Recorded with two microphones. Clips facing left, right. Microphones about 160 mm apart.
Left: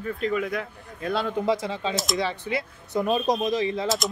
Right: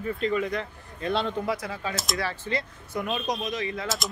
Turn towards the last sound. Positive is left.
turn(degrees=30)  # may be behind; listen again after turning